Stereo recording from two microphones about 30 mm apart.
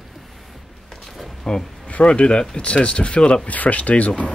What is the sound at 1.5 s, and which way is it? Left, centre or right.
Speech, centre.